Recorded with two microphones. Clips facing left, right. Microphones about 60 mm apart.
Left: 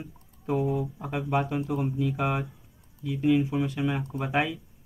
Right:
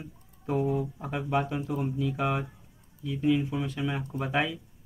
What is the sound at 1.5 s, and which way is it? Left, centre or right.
Speech, left.